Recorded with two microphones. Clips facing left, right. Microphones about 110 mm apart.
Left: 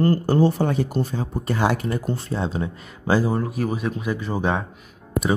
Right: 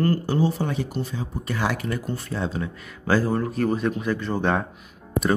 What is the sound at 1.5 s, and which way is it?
Speech, 30° left (ahead or behind).